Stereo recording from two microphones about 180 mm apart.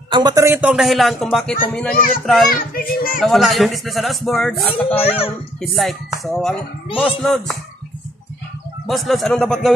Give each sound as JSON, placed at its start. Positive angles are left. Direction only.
{"t": 0.1, "sound": "speech", "side_deg": -20}
{"t": 2.5, "sound": "child singing", "side_deg": 50}
{"t": 3.2, "sound": "speech", "side_deg": 0}
{"t": 4.8, "sound": "speech", "side_deg": 35}
{"t": 5.6, "sound": "speech", "side_deg": 0}
{"t": 8.8, "sound": "speech", "side_deg": 0}